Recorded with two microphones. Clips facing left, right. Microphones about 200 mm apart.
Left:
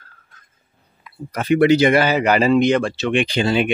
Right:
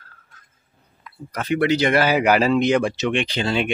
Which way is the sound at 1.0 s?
10° left (ahead or behind).